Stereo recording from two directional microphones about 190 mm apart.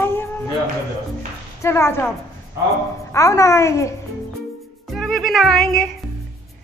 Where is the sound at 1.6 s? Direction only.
15° left (ahead or behind).